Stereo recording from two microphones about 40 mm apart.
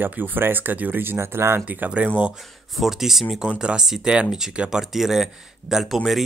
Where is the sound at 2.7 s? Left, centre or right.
Centre.